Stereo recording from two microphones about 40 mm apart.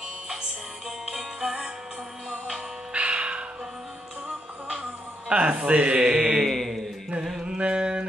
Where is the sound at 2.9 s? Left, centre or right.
Right.